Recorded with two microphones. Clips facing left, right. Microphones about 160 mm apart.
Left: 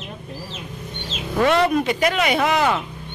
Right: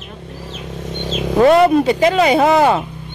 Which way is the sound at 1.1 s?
35° right (ahead or behind).